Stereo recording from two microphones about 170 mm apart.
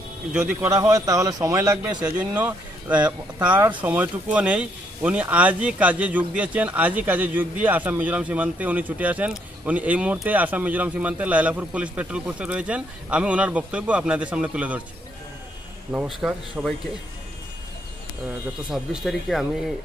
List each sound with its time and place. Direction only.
0.3 s speech: 10° right (ahead or behind)
15.9 s speech: 5° right (ahead or behind)
18.7 s speech: centre (ahead or behind)